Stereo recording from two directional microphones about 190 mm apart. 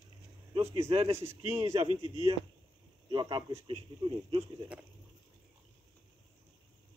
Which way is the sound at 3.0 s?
25° right (ahead or behind).